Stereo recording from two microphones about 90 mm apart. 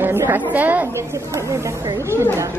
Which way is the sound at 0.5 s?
20° right (ahead or behind).